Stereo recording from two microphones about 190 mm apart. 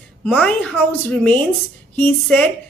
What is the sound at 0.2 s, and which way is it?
A woman's voice, 5° left (ahead or behind).